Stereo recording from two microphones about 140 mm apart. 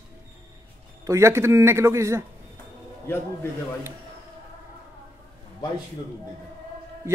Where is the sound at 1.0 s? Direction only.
20° right (ahead or behind).